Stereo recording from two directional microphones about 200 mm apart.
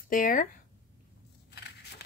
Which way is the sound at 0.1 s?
40° left (ahead or behind).